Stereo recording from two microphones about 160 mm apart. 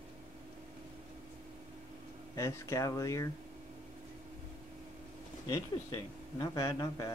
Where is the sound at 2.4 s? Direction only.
20° left (ahead or behind).